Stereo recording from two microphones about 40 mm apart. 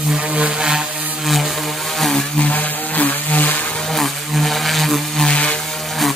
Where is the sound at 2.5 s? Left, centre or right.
Left.